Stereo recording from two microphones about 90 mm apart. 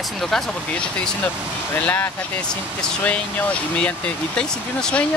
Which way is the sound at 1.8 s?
15° left (ahead or behind).